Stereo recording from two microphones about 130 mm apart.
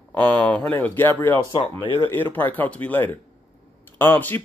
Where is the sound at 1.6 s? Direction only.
45° left (ahead or behind).